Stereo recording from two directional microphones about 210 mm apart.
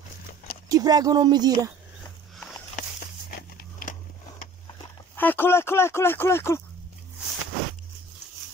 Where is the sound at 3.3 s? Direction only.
45° left (ahead or behind).